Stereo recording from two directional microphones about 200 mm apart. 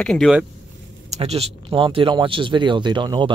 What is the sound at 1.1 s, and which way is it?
Speech, 30° right (ahead or behind).